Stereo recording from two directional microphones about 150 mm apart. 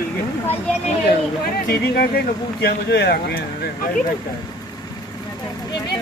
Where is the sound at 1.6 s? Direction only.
90° left.